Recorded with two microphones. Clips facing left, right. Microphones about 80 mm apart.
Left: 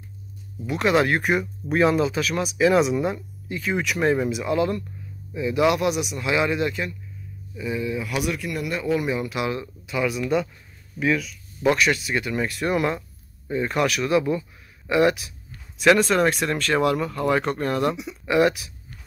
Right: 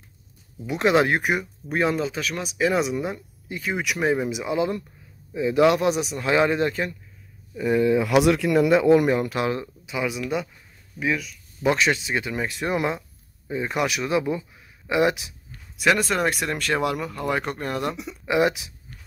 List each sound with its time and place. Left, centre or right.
0.7 s speech: right
1.7 s a man's voice: centre; by 7.0 s right
7.5 s speech: right
9.0 s a man's voice: right
9.8 s speech: centre
11.0 s speech: centre
11.6 s speech: right
15.8 s speech: centre